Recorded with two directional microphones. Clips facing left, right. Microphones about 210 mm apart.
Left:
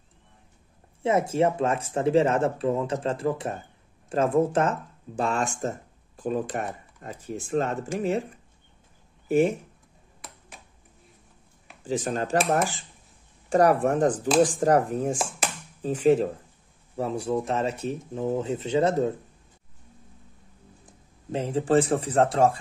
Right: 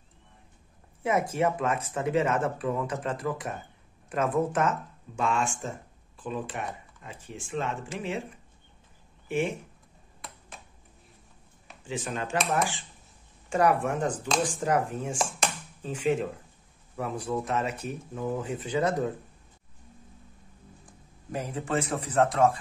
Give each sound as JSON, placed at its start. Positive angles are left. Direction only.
{"t": 1.0, "sound": "speech", "side_deg": 25}
{"t": 9.3, "sound": "speech", "side_deg": 40}
{"t": 11.8, "sound": "speech", "side_deg": 40}
{"t": 15.4, "sound": "a sound", "side_deg": 5}
{"t": 15.8, "sound": "speech", "side_deg": 40}
{"t": 20.8, "sound": "speech", "side_deg": 25}